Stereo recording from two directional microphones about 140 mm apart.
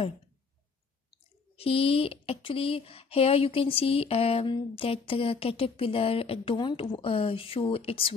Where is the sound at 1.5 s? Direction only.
45° left (ahead or behind).